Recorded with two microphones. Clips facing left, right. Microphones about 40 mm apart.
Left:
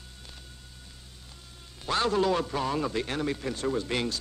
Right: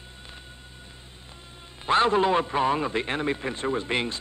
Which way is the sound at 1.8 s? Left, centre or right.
Right.